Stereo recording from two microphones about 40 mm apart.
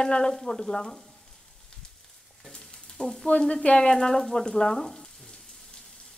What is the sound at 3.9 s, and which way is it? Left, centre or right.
Sizzle, centre.